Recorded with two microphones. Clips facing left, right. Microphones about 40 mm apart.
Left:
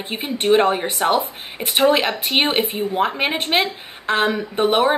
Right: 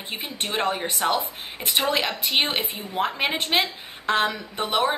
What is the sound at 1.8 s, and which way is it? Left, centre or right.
A woman's voice, left.